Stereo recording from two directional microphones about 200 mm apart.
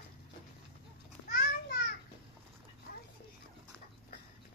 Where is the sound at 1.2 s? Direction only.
50° left (ahead or behind).